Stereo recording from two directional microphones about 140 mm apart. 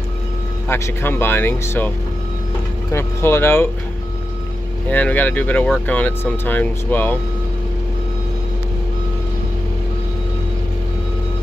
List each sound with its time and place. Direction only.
0.7 s speech: 15° left (ahead or behind)
2.9 s speech: 20° left (ahead or behind)
4.8 s speech: 10° left (ahead or behind)